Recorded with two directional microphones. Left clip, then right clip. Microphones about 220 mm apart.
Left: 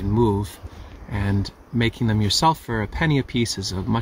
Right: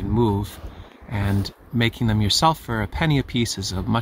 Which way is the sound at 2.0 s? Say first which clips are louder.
Right 1 dB; 10° right (ahead or behind).